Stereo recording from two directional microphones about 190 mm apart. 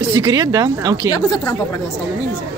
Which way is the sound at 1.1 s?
20° left (ahead or behind).